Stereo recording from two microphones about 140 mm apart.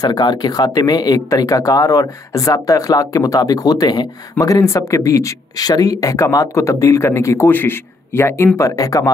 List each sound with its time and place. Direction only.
0.0 s speech: 30° left (ahead or behind)